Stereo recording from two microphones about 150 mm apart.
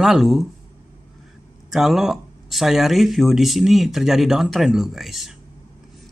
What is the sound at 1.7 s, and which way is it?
Speech, centre (ahead or behind).